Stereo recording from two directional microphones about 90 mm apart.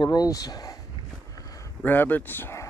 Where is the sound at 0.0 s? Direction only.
45° left (ahead or behind).